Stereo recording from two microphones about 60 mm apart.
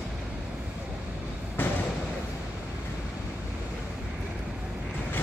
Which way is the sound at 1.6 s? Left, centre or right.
Left.